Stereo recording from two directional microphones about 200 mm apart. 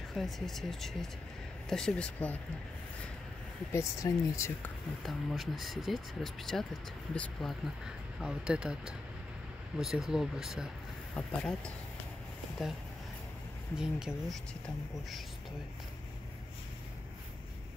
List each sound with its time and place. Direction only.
0.1 s speech: centre (ahead or behind)
3.7 s speech: 15° left (ahead or behind)
5.0 s speech: centre (ahead or behind)